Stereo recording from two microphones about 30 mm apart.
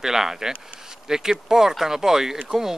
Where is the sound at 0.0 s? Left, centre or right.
Centre.